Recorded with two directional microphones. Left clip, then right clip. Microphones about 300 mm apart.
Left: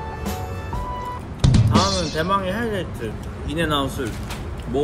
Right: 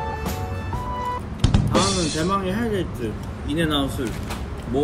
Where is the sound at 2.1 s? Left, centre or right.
Centre.